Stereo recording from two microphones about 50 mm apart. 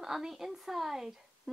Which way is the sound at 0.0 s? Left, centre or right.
Centre.